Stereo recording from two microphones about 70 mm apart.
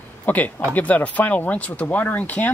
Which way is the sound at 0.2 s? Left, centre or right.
Left.